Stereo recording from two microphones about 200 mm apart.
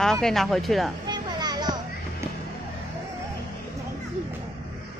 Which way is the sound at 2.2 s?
15° right (ahead or behind).